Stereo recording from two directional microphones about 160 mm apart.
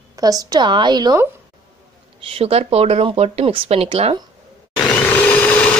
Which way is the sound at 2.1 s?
35° right (ahead or behind).